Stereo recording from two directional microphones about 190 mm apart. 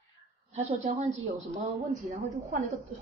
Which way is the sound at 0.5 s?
35° right (ahead or behind).